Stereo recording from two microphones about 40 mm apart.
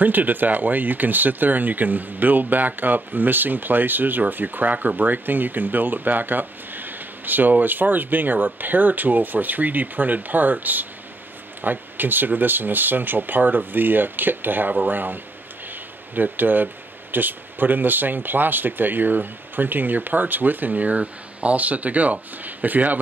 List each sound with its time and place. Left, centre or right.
0.0 s speech: right
16.2 s speech: right